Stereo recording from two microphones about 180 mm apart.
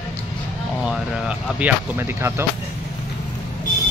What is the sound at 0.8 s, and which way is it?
Speech, 5° right (ahead or behind).